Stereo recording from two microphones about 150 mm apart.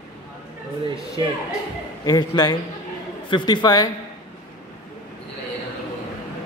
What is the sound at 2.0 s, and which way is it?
A woman's voice, 25° left (ahead or behind).